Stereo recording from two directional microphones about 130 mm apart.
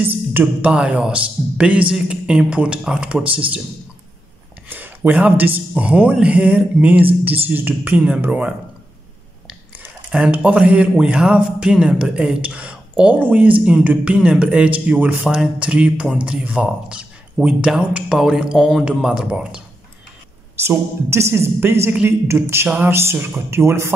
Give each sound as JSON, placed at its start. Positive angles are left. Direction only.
{"t": 0.3, "sound": "speech", "side_deg": -15}
{"t": 4.6, "sound": "speech", "side_deg": -15}
{"t": 10.1, "sound": "speech", "side_deg": -10}
{"t": 20.5, "sound": "a woman's voice", "side_deg": -20}